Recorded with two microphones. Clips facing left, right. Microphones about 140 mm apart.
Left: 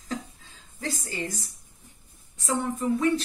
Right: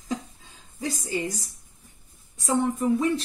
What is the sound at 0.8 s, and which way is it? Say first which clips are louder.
Speech: right 4 dB; 15° right (ahead or behind).